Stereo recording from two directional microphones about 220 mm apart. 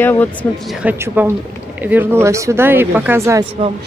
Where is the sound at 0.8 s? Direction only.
5° right (ahead or behind).